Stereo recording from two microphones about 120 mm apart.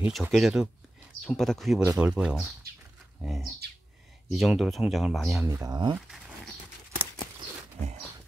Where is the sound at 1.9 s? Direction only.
10° right (ahead or behind).